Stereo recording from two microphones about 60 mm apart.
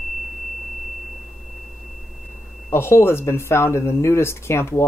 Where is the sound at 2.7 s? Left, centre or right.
Left.